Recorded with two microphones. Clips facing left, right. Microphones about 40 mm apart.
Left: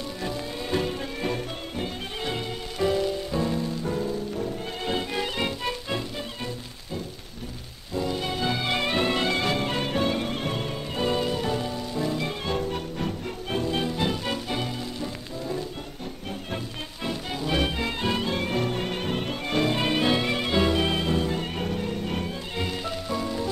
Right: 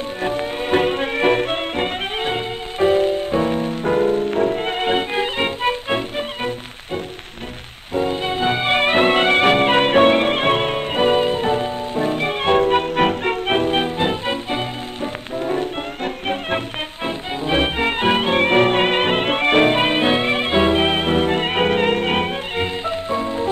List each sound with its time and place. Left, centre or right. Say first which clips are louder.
0.2 s music: right 11 dB; right
17.0 s music: right 5 dB; right
22.6 s music: right 7 dB; right